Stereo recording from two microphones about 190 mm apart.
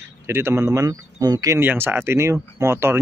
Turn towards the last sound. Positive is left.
turn(degrees=-15)  # may be behind; listen again after turning